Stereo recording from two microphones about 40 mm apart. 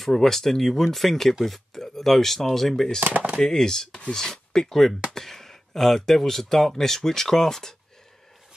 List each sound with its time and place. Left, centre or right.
0.0 s speech: centre
3.0 s speech: right
3.3 s speech: centre